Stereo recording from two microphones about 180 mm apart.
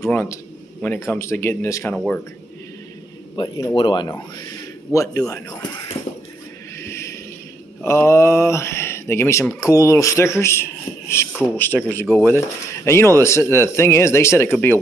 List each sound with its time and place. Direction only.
0.0 s speech: 15° left (ahead or behind)
3.3 s speech: 25° left (ahead or behind)
6.8 s a sound: 15° left (ahead or behind)
7.8 s speech: 15° left (ahead or behind)